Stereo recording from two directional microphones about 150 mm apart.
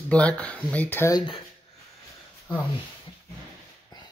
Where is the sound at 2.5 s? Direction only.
25° left (ahead or behind).